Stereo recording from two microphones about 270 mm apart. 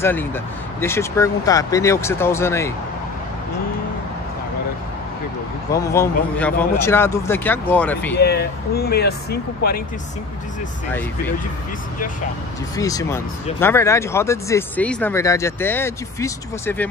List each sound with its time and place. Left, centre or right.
0.0 s speech: centre
5.7 s speech: centre
8.2 s speech: left
10.9 s speech: centre
12.7 s speech: centre